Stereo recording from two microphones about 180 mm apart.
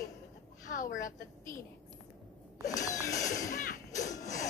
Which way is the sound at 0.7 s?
45° left (ahead or behind).